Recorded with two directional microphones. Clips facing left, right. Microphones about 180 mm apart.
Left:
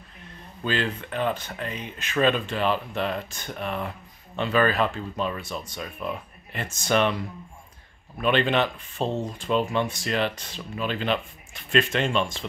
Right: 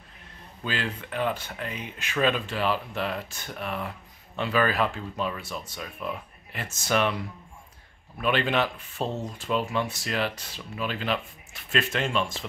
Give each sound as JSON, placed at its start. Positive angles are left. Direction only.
{"t": 0.7, "sound": "speech", "side_deg": -10}
{"t": 8.2, "sound": "speech", "side_deg": -5}